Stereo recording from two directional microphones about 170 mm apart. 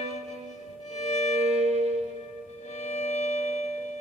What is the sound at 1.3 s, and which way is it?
Music, 40° right (ahead or behind).